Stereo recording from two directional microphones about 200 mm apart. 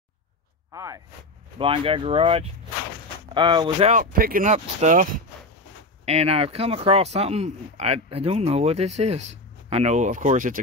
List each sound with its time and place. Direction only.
0.7 s speech: 15° right (ahead or behind)
1.6 s speech: 25° right (ahead or behind)
3.9 s speech: 45° right (ahead or behind)